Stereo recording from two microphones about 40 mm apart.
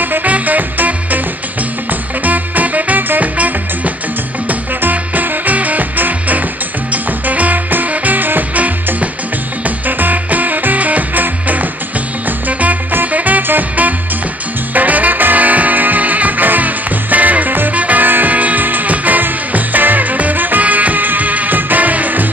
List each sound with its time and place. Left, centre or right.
0.0 s music: right
2.2 s music: right